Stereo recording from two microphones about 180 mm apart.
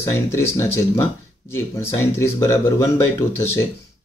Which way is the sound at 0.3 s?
15° left (ahead or behind).